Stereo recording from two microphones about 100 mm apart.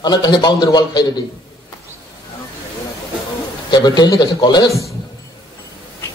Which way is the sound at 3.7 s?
45° left (ahead or behind).